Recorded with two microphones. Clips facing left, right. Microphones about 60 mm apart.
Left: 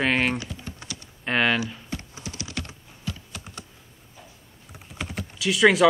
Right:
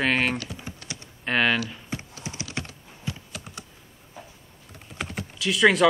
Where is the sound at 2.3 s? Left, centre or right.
Right.